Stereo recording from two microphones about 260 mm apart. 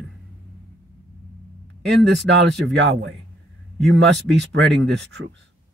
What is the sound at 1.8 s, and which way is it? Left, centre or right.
Speech, right.